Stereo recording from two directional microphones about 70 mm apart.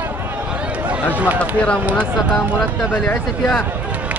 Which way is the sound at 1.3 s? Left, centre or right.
Centre.